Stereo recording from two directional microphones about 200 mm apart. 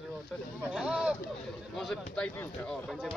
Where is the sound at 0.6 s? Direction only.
5° right (ahead or behind).